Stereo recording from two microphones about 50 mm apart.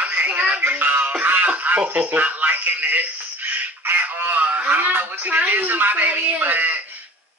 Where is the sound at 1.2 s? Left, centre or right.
Right.